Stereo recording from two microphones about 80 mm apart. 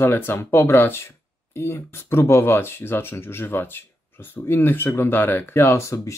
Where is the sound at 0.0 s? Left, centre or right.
Left.